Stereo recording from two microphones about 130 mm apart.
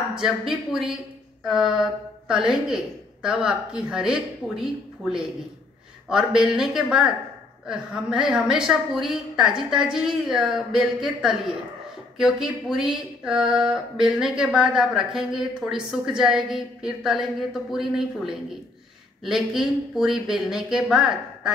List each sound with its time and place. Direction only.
0.1 s speech: 5° right (ahead or behind)